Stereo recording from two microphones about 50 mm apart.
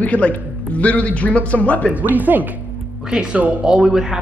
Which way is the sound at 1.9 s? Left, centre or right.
Right.